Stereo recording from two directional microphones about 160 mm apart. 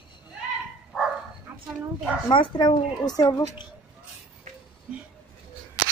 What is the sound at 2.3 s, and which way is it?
A woman's voice, 30° left (ahead or behind).